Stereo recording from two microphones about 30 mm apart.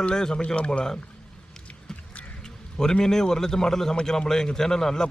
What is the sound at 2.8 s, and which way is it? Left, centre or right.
Speech, left.